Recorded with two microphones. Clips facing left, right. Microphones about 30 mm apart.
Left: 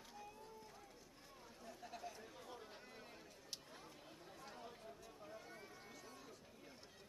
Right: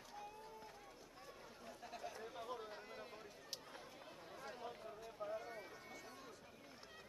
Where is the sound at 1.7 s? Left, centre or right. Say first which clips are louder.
Right 1 dB; centre.